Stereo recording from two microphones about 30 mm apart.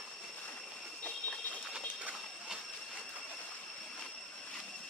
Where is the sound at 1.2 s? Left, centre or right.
Left.